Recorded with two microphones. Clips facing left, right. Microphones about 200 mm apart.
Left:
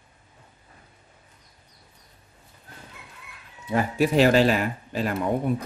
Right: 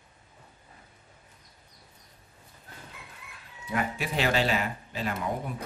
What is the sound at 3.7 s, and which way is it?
Speech, 35° left (ahead or behind).